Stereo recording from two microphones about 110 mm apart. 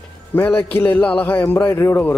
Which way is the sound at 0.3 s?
20° left (ahead or behind).